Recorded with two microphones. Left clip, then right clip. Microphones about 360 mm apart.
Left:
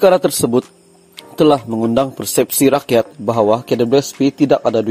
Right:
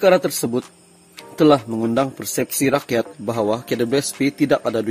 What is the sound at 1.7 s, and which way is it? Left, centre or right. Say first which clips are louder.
Speech: left 4 dB; centre.